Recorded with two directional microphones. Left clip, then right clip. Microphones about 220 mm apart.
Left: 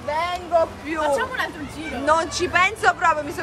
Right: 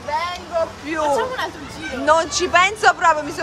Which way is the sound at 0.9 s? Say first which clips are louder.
Right 2 dB; 10° right (ahead or behind).